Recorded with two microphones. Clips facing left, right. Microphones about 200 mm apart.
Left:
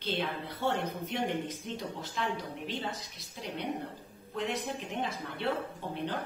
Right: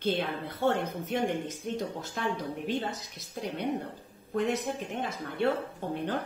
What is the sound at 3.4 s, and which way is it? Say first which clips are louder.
Speech: right 4 dB; 50° right (ahead or behind).